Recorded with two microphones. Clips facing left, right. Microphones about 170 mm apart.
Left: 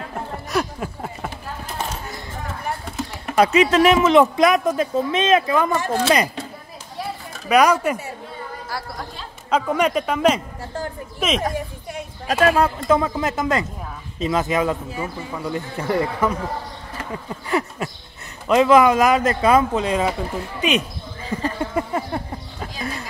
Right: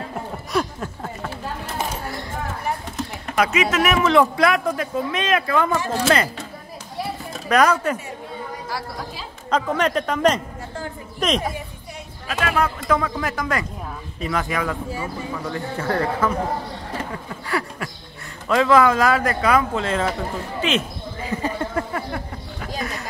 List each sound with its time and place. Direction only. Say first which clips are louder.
0.5 s a sound: even; 5° left (ahead or behind)
3.3 s speech: left 5 dB; 30° left (ahead or behind); by 6.2 s 15° left (ahead or behind)
7.4 s speech: left 2 dB; 10° left (ahead or behind)
9.5 s speech: left 1 dB; 10° left (ahead or behind)
11.9 s speech: left 5 dB; 35° left (ahead or behind); by 21.5 s 10° left (ahead or behind)
21.7 s a sound: left 2 dB; 25° left (ahead or behind)